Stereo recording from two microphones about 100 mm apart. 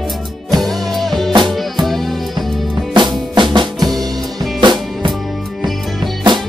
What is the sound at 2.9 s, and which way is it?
Drum, 50° right (ahead or behind).